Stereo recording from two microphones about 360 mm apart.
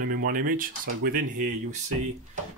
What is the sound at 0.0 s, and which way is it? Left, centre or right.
Speech, right.